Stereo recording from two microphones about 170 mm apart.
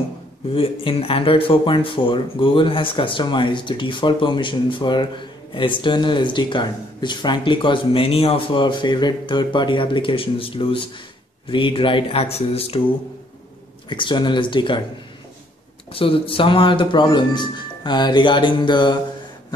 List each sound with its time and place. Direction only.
0.5 s speech: 30° left (ahead or behind)
13.8 s speech: 30° left (ahead or behind)
15.9 s speech: 35° left (ahead or behind)